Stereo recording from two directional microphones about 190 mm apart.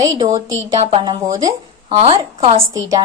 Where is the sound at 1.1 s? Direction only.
20° right (ahead or behind).